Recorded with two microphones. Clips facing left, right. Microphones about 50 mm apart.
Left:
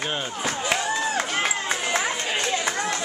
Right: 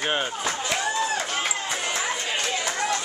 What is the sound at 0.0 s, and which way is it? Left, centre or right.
Speech, right.